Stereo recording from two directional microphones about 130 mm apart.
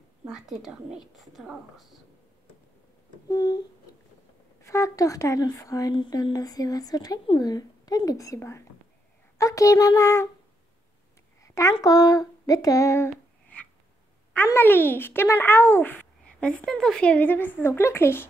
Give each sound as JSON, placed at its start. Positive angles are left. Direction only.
{"t": 0.3, "sound": "a woman's voice", "side_deg": -5}
{"t": 3.3, "sound": "speech", "side_deg": 30}
{"t": 4.6, "sound": "speech", "side_deg": 25}
{"t": 11.4, "sound": "a sound", "side_deg": 25}
{"t": 11.8, "sound": "speech", "side_deg": 30}